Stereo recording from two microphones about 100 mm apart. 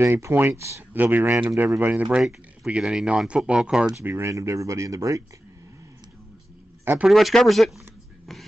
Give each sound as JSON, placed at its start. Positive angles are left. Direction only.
{"t": 0.0, "sound": "speech", "side_deg": -25}
{"t": 2.0, "sound": "speech", "side_deg": -5}
{"t": 4.0, "sound": "speech", "side_deg": -25}
{"t": 6.8, "sound": "a sound", "side_deg": -20}
{"t": 7.1, "sound": "speech", "side_deg": 0}